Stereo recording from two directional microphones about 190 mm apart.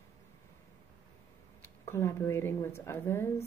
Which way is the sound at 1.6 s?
15° left (ahead or behind).